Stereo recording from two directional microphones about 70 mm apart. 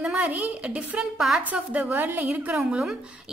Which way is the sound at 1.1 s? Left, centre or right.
Centre.